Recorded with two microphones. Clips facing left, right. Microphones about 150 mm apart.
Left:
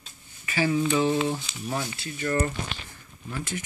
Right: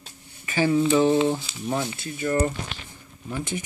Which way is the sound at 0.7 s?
25° right (ahead or behind).